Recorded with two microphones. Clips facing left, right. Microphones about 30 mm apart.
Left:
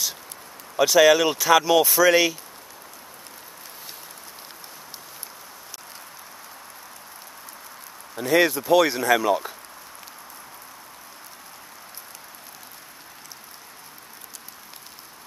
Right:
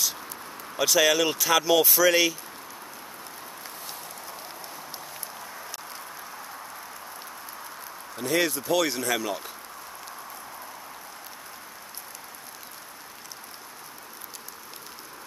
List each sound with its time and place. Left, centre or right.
0.7 s speech: centre
8.2 s speech: centre